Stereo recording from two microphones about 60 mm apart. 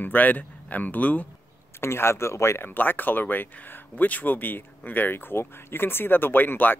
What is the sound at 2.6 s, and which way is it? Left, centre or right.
Speech, left.